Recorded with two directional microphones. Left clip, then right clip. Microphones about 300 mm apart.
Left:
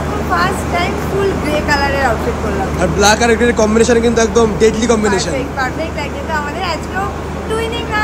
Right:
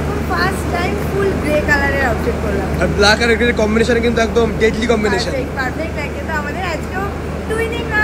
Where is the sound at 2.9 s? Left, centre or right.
Centre.